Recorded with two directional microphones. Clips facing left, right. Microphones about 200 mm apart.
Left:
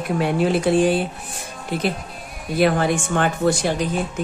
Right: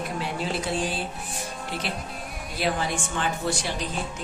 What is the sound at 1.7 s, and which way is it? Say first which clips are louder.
Speech: left 11 dB; 50° left (ahead or behind).